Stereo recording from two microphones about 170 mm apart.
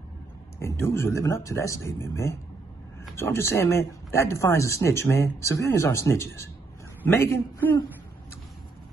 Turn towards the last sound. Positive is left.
turn(degrees=15)  # may be behind; listen again after turning